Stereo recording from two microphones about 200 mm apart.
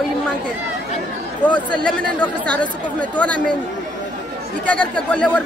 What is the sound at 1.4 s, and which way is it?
Speech, 5° left (ahead or behind).